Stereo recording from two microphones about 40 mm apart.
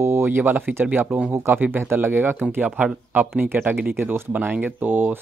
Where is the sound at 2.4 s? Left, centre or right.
Right.